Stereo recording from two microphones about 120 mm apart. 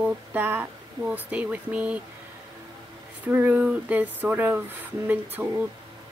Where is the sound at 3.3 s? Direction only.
15° right (ahead or behind).